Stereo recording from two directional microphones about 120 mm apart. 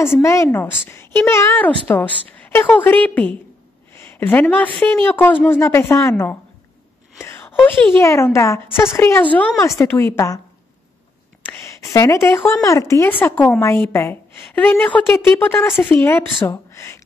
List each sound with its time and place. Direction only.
0.2 s a woman's voice: 25° left (ahead or behind)
3.9 s a sound: 20° left (ahead or behind)
5.1 s a woman's voice: 15° left (ahead or behind)
9.6 s a woman's voice: 25° left (ahead or behind)
11.9 s a woman's voice: 25° left (ahead or behind)